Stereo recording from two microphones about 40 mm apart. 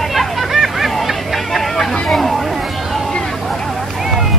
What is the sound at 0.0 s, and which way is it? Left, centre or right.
Hubbub, centre.